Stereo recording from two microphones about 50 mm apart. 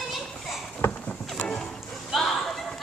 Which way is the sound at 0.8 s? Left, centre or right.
Left.